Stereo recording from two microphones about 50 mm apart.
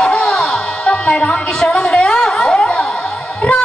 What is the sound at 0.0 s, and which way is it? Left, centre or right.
Music, centre.